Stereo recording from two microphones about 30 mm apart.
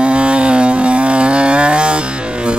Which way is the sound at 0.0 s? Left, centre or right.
Right.